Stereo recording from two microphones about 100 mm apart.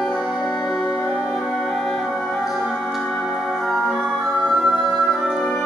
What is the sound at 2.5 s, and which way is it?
Music, 5° right (ahead or behind).